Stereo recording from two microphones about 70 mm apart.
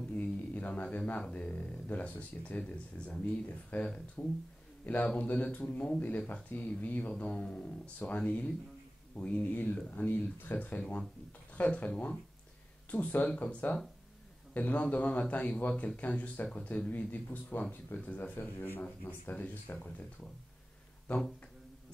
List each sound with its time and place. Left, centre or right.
0.1 s a sound: left
1.3 s speech: centre
10.8 s speech: centre
21.1 s speech: centre